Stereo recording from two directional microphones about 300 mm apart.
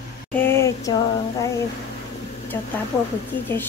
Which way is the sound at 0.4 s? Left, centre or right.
Centre.